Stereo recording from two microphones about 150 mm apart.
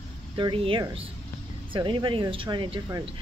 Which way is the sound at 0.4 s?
35° right (ahead or behind).